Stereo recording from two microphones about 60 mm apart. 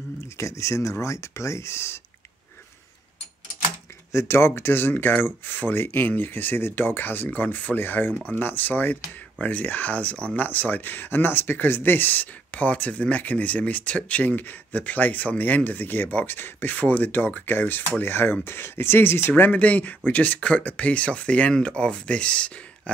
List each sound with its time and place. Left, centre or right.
0.2 s speech: left
4.1 s speech: left
19.5 s speech: left